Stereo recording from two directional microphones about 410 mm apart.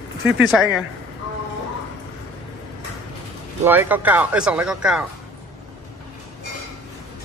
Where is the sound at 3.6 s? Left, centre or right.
Centre.